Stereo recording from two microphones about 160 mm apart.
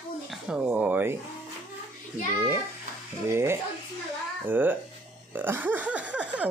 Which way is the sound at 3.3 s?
15° right (ahead or behind).